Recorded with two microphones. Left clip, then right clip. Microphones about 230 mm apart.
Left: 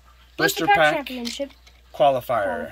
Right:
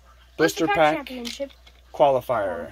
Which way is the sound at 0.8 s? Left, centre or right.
Centre.